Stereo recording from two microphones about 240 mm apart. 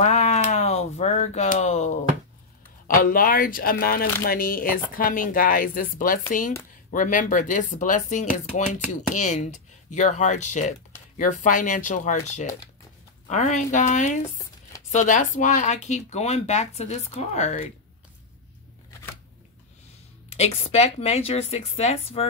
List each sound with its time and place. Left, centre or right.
0.0 s a sound: left
2.9 s a woman's voice: left
20.2 s speech: left